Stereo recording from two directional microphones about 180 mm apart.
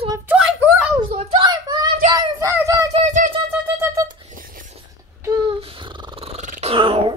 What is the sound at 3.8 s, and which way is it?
Wind instrument, 20° right (ahead or behind).